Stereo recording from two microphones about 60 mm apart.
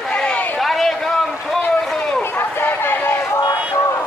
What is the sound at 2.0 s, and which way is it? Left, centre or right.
Run, centre.